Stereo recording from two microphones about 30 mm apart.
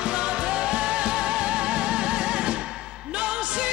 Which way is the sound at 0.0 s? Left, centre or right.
Right.